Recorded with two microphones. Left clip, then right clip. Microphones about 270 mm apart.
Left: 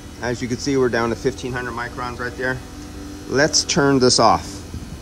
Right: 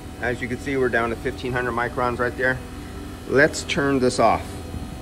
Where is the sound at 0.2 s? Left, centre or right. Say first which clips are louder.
Left 2 dB; centre.